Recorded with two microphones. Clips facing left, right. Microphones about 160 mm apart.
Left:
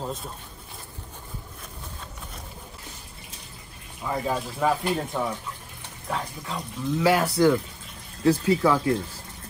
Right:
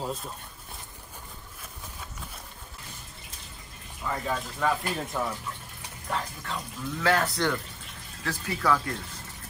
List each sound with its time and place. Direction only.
0.0 s a sound: centre (ahead or behind)
4.0 s speech: 10° left (ahead or behind)
8.2 s speech: 15° left (ahead or behind)